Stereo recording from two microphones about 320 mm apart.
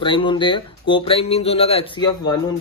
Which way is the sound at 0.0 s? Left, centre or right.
Centre.